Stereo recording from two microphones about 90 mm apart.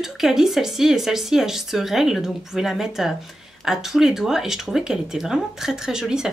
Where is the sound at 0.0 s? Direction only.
5° right (ahead or behind).